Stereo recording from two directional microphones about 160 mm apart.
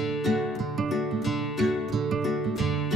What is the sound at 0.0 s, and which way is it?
Music, centre (ahead or behind).